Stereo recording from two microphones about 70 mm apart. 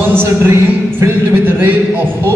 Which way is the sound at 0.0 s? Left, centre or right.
Right.